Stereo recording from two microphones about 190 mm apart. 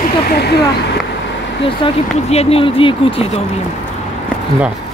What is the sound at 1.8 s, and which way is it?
Speech, 30° left (ahead or behind).